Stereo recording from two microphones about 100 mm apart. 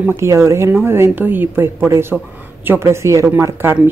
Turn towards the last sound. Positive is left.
turn(degrees=-20)  # may be behind; listen again after turning